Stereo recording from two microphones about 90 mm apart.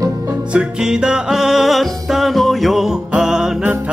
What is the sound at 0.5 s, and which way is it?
Music, 10° right (ahead or behind).